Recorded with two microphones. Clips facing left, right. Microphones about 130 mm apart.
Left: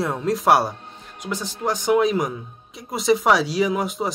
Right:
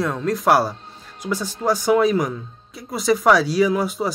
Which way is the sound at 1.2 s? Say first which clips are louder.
Right 4 dB; 15° left (ahead or behind).